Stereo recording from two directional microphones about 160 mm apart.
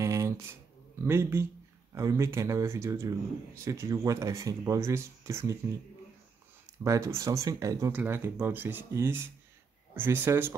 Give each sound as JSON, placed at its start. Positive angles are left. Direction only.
{"t": 0.0, "sound": "a sound", "side_deg": -20}
{"t": 1.0, "sound": "speech", "side_deg": -15}
{"t": 6.8, "sound": "speech", "side_deg": -20}